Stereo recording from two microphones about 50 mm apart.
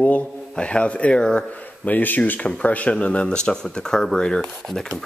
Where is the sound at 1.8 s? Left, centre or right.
Left.